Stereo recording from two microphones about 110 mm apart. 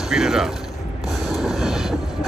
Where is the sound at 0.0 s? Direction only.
5° right (ahead or behind).